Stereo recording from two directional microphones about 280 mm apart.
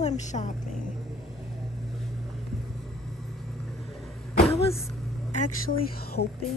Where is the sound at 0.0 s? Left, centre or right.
Left.